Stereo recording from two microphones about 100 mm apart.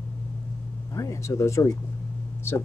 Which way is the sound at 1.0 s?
30° left (ahead or behind).